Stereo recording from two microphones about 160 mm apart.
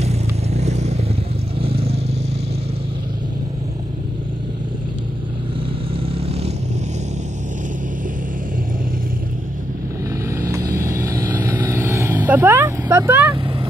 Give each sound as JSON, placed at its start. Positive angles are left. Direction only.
{"t": 0.0, "sound": "vehicle", "side_deg": -45}
{"t": 10.4, "sound": "vehicle", "side_deg": -20}